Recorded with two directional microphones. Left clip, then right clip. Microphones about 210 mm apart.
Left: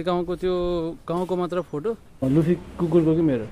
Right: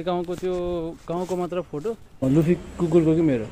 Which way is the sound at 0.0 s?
15° left (ahead or behind).